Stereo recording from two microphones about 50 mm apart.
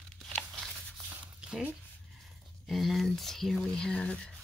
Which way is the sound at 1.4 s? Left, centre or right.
Centre.